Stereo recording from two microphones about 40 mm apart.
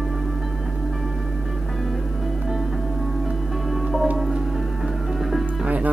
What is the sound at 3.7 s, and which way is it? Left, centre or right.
Music, centre.